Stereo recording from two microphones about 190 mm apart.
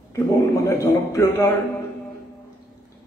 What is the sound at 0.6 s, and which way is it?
Speech, 15° left (ahead or behind).